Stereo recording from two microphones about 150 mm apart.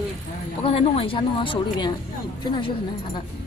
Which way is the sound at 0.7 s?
40° left (ahead or behind).